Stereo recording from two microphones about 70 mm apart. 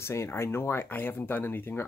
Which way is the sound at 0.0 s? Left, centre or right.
Left.